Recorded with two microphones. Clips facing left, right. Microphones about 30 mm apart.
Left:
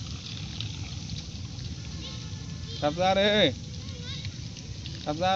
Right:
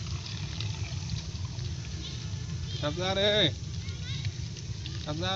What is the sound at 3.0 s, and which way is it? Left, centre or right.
Speech, left.